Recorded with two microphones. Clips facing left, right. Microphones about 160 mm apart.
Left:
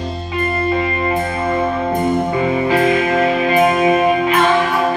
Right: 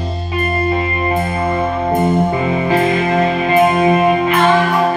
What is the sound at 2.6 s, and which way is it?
Music, 25° right (ahead or behind).